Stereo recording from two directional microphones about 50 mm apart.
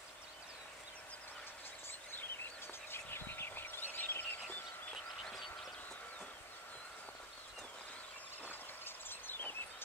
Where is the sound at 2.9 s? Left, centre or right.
Left.